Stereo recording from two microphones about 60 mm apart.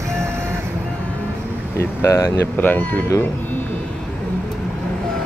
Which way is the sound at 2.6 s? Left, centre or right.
Left.